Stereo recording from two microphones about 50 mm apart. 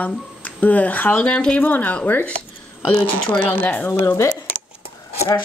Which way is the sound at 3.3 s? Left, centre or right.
Left.